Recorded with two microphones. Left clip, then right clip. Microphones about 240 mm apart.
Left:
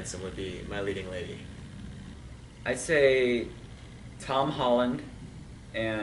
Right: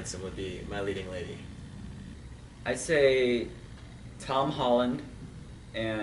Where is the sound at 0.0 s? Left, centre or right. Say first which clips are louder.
Left 1 dB; centre.